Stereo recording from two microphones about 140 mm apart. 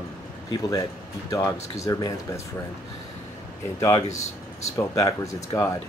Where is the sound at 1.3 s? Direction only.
25° left (ahead or behind).